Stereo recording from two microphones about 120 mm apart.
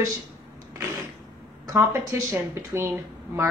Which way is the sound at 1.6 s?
25° right (ahead or behind).